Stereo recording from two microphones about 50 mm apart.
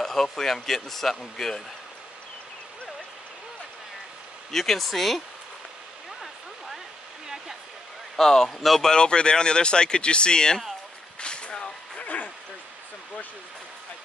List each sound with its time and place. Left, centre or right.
0.0 s speech: centre
4.5 s speech: centre
8.2 s speech: centre
8.9 s speech: centre
11.1 s a sound: centre